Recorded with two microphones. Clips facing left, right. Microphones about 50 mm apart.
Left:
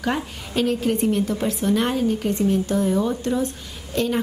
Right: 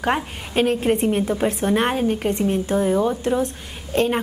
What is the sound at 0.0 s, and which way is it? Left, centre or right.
Speech, right.